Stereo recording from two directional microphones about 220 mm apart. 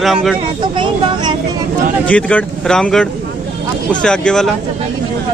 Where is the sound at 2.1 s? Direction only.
5° left (ahead or behind).